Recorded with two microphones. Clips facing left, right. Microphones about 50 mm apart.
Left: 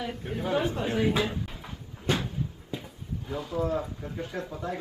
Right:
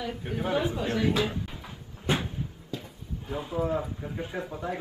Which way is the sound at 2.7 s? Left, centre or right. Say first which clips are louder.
Even; centre.